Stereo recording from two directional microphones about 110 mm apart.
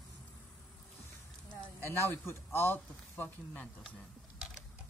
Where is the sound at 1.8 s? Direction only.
20° left (ahead or behind).